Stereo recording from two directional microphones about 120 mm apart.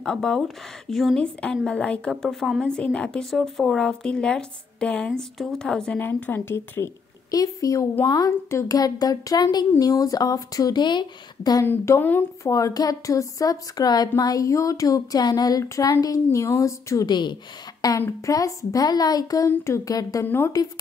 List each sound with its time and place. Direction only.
0.0 s a woman's voice: 5° left (ahead or behind); by 11.6 s 35° left (ahead or behind)
11.6 s a woman's voice: 20° left (ahead or behind)
12.4 s a woman's voice: 30° left (ahead or behind)
20.2 s speech: 20° left (ahead or behind)